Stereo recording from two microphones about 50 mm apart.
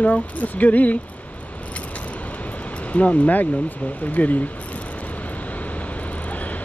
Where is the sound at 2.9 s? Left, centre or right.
Left.